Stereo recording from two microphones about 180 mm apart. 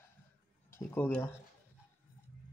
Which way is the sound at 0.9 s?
10° left (ahead or behind).